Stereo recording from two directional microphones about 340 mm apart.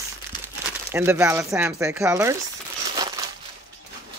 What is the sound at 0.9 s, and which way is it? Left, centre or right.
Speech, centre.